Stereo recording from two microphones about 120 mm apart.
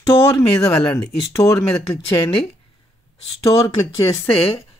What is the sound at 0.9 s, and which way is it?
Speech, 25° left (ahead or behind).